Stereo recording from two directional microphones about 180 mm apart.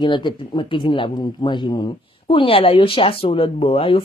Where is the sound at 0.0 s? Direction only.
25° left (ahead or behind).